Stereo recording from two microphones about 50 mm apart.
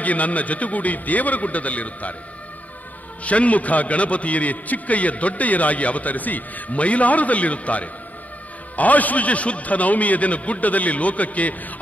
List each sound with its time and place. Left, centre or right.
0.0 s a man's voice: left
3.3 s a man's voice: left